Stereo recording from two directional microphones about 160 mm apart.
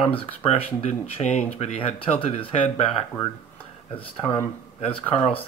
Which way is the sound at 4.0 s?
15° left (ahead or behind).